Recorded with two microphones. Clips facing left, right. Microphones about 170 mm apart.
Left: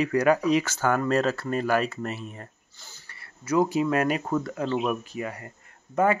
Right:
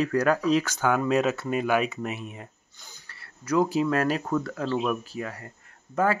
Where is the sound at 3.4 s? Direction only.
5° left (ahead or behind).